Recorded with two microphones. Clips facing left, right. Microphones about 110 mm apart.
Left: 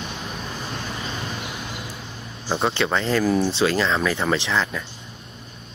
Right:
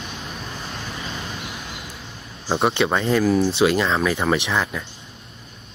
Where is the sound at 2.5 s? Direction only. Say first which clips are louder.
Right 2 dB; 15° right (ahead or behind).